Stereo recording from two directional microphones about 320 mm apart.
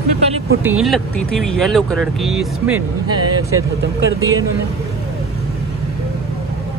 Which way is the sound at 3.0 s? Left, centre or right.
Right.